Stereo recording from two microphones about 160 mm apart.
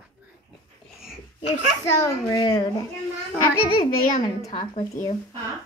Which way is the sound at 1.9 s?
25° left (ahead or behind).